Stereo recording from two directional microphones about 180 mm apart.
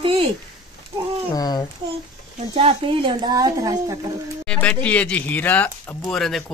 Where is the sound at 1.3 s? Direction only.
20° left (ahead or behind).